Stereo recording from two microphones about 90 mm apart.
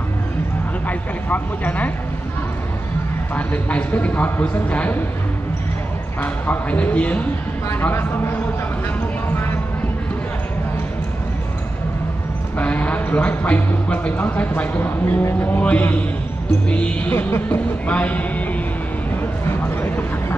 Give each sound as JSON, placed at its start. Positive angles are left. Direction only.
{"t": 0.8, "sound": "speech", "side_deg": 20}
{"t": 3.3, "sound": "speech", "side_deg": 15}
{"t": 6.2, "sound": "speech", "side_deg": 20}
{"t": 12.5, "sound": "speech", "side_deg": 15}
{"t": 19.4, "sound": "speech", "side_deg": 25}